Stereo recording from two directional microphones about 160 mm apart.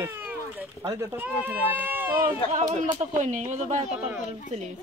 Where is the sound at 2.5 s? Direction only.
45° right (ahead or behind).